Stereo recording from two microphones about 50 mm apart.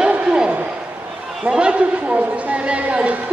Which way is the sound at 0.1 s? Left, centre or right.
Right.